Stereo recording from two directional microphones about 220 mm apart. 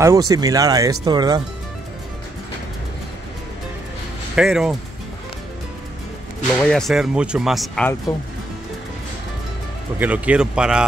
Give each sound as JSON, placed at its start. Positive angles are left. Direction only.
{"t": 0.0, "sound": "speech", "side_deg": -15}
{"t": 4.4, "sound": "speech", "side_deg": 0}
{"t": 6.5, "sound": "speech", "side_deg": 5}
{"t": 9.9, "sound": "speech", "side_deg": -5}